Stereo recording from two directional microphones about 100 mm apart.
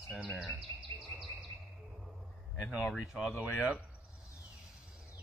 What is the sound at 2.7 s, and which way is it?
Speech, centre (ahead or behind).